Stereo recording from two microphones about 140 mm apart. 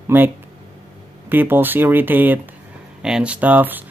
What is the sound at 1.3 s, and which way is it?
Speech, 15° right (ahead or behind).